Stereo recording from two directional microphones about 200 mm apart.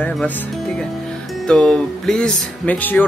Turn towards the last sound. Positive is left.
turn(degrees=10)  # may be behind; listen again after turning